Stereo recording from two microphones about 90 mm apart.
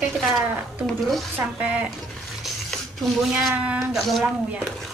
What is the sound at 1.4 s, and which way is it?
Speech, 15° right (ahead or behind).